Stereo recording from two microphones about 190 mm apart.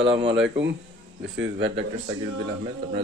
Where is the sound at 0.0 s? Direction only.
30° right (ahead or behind).